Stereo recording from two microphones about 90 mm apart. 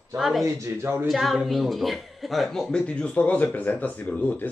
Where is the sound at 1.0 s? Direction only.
Centre (ahead or behind).